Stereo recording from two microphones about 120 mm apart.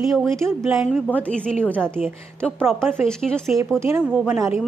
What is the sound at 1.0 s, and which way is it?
A woman's voice, 10° left (ahead or behind).